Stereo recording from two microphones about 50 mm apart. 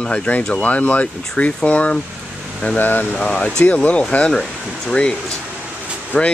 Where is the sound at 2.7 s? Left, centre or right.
Left.